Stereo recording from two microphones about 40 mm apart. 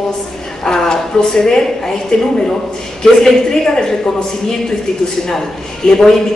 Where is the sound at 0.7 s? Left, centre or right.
Centre.